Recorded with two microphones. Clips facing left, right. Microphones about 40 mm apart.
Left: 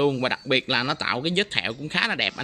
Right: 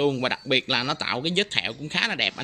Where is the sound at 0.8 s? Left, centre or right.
Left.